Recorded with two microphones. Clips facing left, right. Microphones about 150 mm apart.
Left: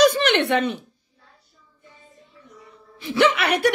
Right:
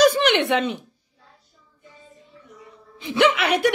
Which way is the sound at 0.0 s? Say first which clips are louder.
Even; 10° right (ahead or behind).